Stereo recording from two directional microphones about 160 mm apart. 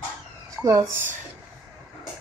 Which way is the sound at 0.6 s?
20° right (ahead or behind).